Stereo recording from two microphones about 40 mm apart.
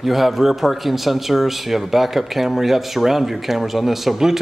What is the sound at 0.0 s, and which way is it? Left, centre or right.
Speech, centre.